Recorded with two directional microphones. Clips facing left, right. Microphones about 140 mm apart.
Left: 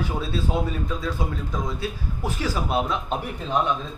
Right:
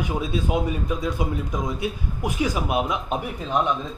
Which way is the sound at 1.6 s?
15° right (ahead or behind).